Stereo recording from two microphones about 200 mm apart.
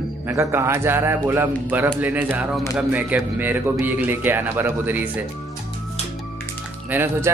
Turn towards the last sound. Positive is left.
turn(degrees=-10)  # may be behind; listen again after turning